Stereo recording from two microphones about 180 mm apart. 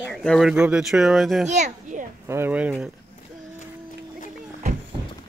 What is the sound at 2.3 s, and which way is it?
Speech, 10° right (ahead or behind).